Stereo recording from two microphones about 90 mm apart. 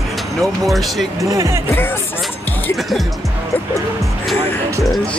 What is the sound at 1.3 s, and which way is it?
Speech, 35° right (ahead or behind).